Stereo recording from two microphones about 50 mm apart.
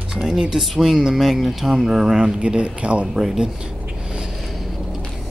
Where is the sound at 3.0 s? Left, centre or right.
Centre.